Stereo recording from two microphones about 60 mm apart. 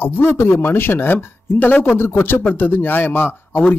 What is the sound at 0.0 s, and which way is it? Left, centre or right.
Speech, left.